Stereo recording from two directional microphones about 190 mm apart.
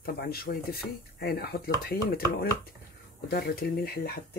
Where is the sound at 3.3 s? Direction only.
55° left (ahead or behind).